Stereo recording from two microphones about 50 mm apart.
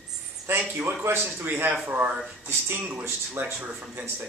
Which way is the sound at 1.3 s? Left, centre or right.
Right.